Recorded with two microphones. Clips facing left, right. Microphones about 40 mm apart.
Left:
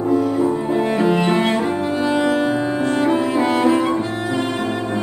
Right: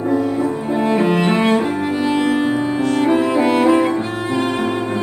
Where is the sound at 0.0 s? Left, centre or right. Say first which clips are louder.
Left 1 dB; right.